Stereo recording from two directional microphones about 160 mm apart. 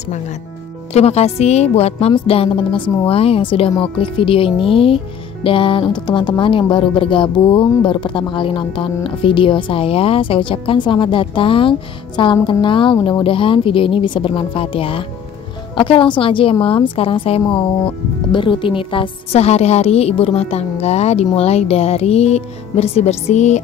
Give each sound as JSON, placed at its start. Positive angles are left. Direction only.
{"t": 0.9, "sound": "a woman's voice", "side_deg": 40}